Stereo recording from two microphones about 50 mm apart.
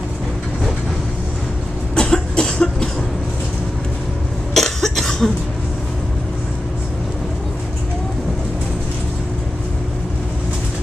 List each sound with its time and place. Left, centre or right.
2.0 s cough: centre
4.6 s cough: centre